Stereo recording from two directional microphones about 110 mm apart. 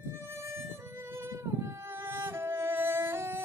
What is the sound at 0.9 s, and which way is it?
Music, 25° right (ahead or behind).